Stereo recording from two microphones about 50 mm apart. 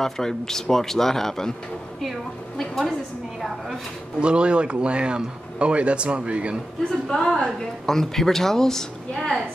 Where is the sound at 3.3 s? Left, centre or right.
Centre.